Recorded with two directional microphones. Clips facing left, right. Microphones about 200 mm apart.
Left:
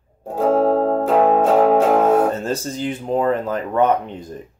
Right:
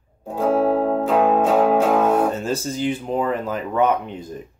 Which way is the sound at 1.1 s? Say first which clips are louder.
Left 2 dB; 30° left (ahead or behind).